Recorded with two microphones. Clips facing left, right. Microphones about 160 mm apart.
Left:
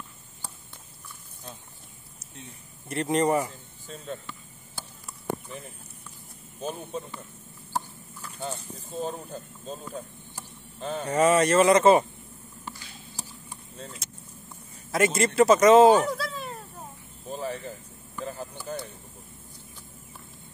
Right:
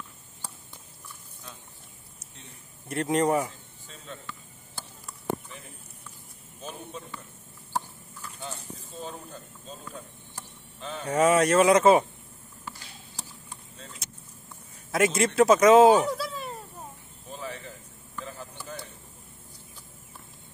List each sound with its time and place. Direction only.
2.9 s speech: centre (ahead or behind)
3.8 s speech: 40° left (ahead or behind)
9.0 s speech: 40° left (ahead or behind)
11.1 s speech: centre (ahead or behind)
14.9 s speech: centre (ahead or behind)
17.3 s a sound: 35° left (ahead or behind)
18.7 s speech: 40° left (ahead or behind)